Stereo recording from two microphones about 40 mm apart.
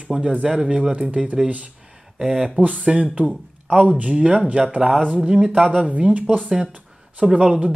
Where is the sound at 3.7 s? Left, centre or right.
Right.